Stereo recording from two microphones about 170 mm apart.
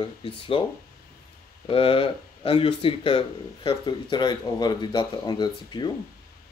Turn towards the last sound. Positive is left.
turn(degrees=25)  # may be behind; listen again after turning